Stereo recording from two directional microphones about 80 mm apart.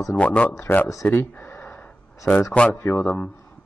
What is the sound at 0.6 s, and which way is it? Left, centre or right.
Speech, left.